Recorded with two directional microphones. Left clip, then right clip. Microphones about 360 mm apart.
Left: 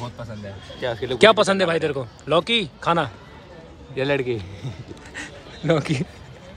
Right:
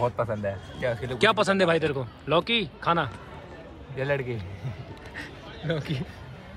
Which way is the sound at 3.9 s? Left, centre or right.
Left.